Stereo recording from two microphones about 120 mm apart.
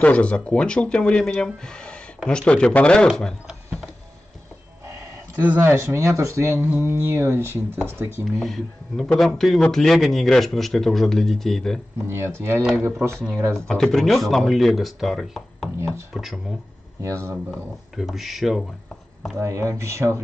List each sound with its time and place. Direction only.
0.0 s speech: 10° left (ahead or behind)
3.1 s a sound: centre (ahead or behind)
5.4 s speech: 15° right (ahead or behind)
8.3 s a man's voice: centre (ahead or behind)
12.1 s speech: 20° right (ahead or behind)
13.6 s a man's voice: 10° left (ahead or behind)
17.0 s speech: 25° right (ahead or behind)
17.9 s a man's voice: centre (ahead or behind)
19.3 s speech: 25° right (ahead or behind)